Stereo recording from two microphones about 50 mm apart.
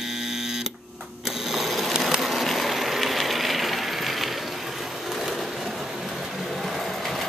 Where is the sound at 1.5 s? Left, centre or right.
Centre.